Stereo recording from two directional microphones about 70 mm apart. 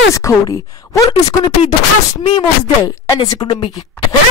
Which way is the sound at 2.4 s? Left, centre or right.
Left.